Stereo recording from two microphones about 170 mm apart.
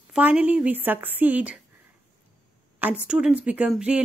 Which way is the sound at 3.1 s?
5° right (ahead or behind).